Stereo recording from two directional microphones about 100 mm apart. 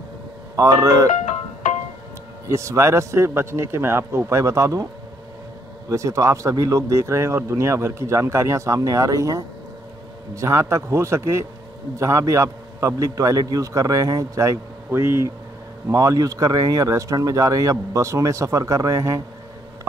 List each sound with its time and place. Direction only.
0.6 s speech: 35° right (ahead or behind)
2.4 s a man's voice: 30° right (ahead or behind)
5.9 s a man's voice: 30° right (ahead or behind)
15.9 s speech: 35° right (ahead or behind)